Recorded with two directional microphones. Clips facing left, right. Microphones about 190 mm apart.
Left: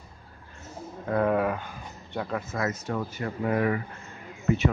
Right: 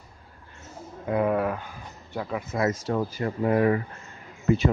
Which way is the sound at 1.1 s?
Centre (ahead or behind).